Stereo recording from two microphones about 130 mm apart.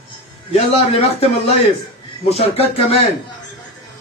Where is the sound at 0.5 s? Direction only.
50° left (ahead or behind).